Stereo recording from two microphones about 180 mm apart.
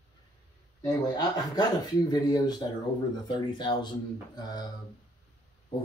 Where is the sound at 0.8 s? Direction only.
25° left (ahead or behind).